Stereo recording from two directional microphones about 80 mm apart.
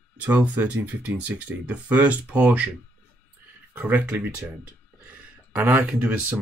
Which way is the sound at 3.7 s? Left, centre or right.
Right.